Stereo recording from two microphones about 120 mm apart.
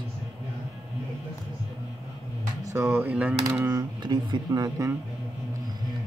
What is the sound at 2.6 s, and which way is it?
Speech, 25° right (ahead or behind).